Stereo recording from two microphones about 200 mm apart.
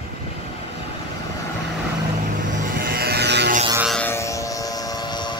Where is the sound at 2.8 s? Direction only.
50° right (ahead or behind).